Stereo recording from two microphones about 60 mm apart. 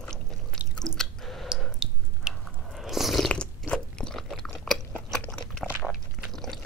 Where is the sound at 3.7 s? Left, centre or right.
Centre.